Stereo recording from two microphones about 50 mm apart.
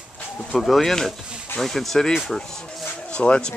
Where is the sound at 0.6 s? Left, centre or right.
Centre.